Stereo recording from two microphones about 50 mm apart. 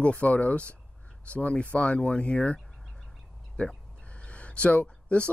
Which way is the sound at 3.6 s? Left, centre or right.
Left.